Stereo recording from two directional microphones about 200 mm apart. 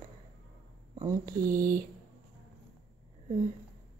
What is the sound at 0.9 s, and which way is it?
Speech, 20° right (ahead or behind).